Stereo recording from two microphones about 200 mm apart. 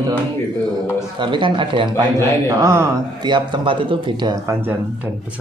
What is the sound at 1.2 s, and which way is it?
Speech, 25° right (ahead or behind).